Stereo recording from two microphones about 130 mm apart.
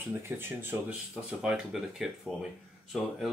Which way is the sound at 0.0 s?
15° right (ahead or behind).